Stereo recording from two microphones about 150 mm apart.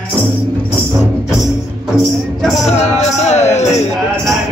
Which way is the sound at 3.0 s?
50° left (ahead or behind).